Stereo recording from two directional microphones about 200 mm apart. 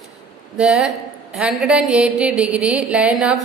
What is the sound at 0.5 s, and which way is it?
A woman's voice, 5° right (ahead or behind).